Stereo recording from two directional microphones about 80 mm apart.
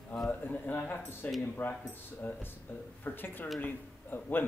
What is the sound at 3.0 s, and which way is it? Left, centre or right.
A man's voice, left.